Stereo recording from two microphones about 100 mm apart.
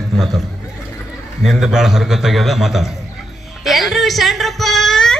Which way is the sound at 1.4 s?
5° right (ahead or behind).